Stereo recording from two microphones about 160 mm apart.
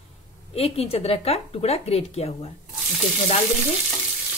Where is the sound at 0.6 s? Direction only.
40° left (ahead or behind).